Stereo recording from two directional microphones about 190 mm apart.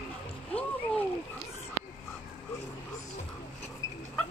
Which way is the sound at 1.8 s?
15° right (ahead or behind).